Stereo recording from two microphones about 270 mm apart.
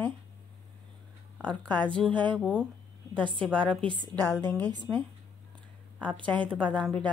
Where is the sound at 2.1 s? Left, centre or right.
Centre.